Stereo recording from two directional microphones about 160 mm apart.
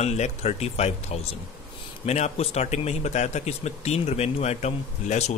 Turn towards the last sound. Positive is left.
turn(degrees=45)  # may be behind; listen again after turning